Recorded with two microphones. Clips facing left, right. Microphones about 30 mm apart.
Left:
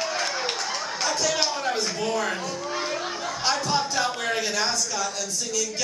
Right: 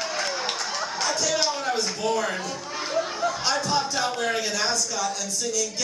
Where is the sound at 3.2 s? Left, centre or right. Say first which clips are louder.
Left 2 dB; left.